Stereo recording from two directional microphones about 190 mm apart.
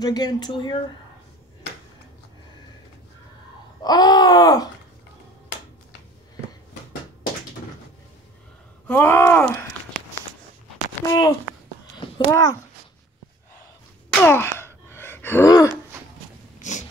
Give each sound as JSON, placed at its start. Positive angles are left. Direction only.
{"t": 0.0, "sound": "groan", "side_deg": 20}
{"t": 3.8, "sound": "groan", "side_deg": 20}
{"t": 8.8, "sound": "a sound", "side_deg": 10}
{"t": 11.1, "sound": "groan", "side_deg": 20}
{"t": 12.3, "sound": "speech", "side_deg": 15}
{"t": 14.1, "sound": "a sound", "side_deg": 10}